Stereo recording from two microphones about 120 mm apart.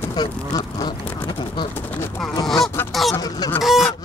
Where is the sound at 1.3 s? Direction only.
40° left (ahead or behind).